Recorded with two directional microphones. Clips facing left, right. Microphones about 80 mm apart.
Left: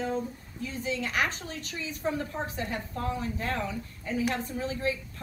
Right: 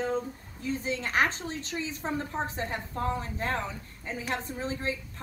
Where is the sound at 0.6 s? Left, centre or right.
Right.